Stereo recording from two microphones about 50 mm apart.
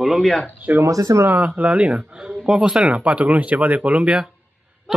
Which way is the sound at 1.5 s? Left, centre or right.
Right.